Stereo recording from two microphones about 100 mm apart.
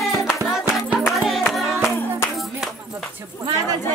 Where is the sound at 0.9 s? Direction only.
Centre (ahead or behind).